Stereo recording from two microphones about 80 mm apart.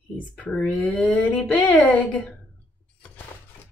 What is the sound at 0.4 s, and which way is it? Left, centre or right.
A woman's voice, centre.